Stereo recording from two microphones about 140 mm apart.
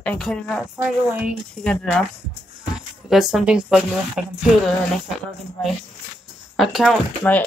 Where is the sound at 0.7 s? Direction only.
10° right (ahead or behind).